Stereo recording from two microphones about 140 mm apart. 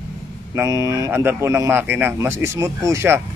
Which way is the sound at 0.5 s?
20° right (ahead or behind).